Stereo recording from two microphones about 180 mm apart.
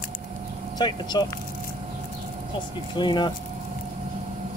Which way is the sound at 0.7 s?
25° left (ahead or behind).